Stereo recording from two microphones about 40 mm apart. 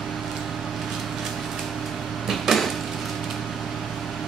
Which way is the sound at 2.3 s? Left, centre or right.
Centre.